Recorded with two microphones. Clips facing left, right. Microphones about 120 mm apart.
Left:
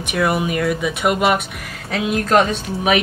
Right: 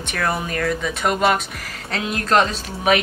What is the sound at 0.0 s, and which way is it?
Speech, 10° left (ahead or behind).